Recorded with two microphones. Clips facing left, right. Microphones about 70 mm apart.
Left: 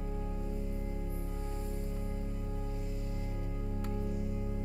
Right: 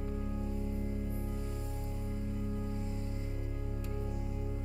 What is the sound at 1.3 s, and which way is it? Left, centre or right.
Music, left.